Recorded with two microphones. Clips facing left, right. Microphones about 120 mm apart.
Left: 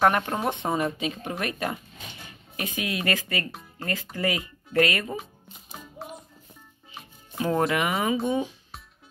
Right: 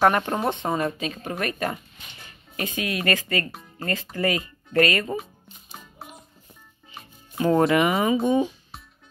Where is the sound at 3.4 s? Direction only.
5° left (ahead or behind).